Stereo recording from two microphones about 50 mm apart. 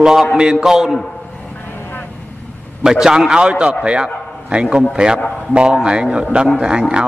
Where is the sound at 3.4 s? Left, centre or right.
Right.